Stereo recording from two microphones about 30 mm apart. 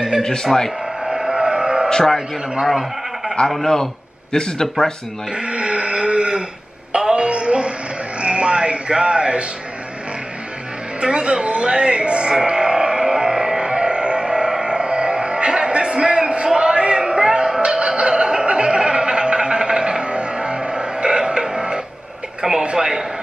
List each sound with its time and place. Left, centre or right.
0.2 s speech: centre
1.0 s vehicle: centre
1.9 s a man's voice: left
2.6 s speech: centre
3.6 s speech: centre
5.3 s a sound: right
7.2 s music: right
11.0 s speech: right
12.4 s music: right
13.6 s a sound: right
17.6 s music: right
22.4 s a sound: right